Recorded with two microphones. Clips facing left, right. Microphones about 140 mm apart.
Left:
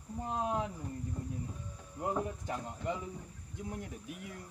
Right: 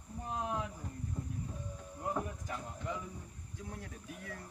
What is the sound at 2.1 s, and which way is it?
A man's voice, 25° left (ahead or behind).